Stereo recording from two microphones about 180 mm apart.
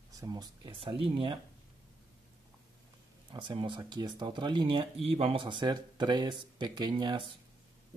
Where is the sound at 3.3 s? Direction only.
25° right (ahead or behind).